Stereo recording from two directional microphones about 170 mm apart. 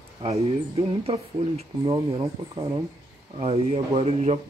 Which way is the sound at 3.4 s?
35° right (ahead or behind).